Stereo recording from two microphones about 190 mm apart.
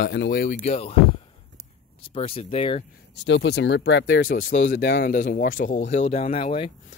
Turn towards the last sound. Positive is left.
turn(degrees=30)  # may be behind; listen again after turning